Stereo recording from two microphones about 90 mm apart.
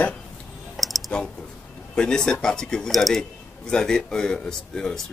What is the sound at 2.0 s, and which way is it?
Speech, 10° left (ahead or behind).